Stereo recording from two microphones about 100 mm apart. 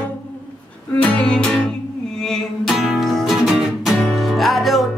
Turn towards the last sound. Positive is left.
turn(degrees=0)  # may be behind; listen again after turning